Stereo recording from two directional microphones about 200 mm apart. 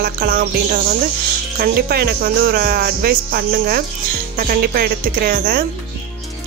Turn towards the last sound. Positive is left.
turn(degrees=-50)  # may be behind; listen again after turning